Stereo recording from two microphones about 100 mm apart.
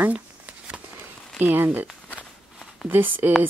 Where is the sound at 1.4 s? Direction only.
20° right (ahead or behind).